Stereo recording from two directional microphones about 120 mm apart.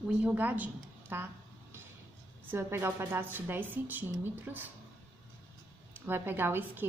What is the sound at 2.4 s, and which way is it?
A woman's voice, 20° right (ahead or behind).